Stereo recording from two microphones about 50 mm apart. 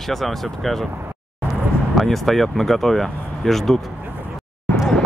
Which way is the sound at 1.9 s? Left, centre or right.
Centre.